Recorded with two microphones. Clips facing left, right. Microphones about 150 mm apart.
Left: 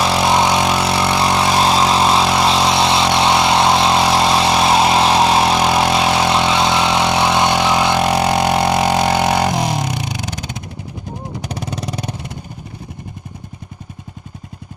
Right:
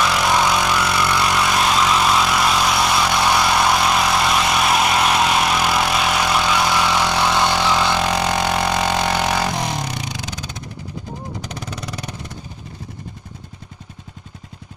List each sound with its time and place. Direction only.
0.0 s vehicle: 30° left (ahead or behind); by 10.1 s 10° left (ahead or behind)
11.6 s vehicle: 20° left (ahead or behind)